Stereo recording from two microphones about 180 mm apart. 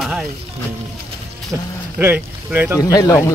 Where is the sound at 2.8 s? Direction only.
20° left (ahead or behind).